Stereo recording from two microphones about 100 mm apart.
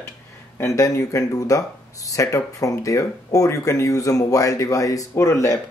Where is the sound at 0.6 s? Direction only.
30° left (ahead or behind).